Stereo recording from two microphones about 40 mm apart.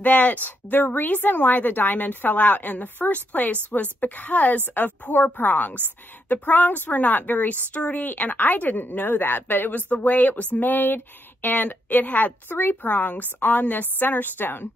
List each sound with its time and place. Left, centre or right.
0.0 s a woman's voice: left
8.0 s a woman's voice: left